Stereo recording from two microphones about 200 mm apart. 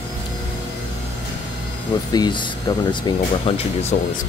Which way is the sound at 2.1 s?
20° left (ahead or behind).